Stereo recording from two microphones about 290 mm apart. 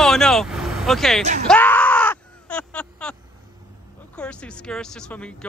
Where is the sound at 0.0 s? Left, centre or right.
Centre.